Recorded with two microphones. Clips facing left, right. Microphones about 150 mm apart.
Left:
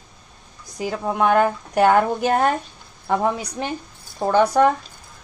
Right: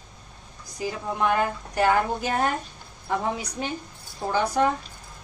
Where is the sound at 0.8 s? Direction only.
60° left (ahead or behind).